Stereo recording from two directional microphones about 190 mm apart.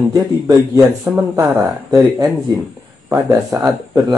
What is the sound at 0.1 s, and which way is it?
Speech, 20° right (ahead or behind).